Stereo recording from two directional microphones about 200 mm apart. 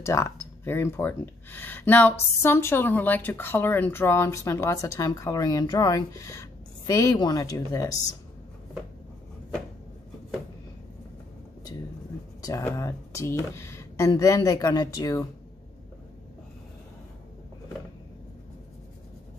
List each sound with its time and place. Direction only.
0.0 s speech: 15° left (ahead or behind)
12.4 s speech: 15° left (ahead or behind)